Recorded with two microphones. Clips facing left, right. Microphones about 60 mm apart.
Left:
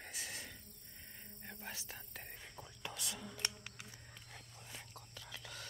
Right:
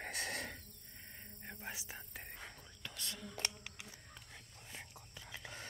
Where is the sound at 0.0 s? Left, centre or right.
Right.